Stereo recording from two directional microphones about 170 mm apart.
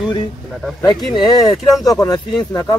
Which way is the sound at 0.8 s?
25° left (ahead or behind).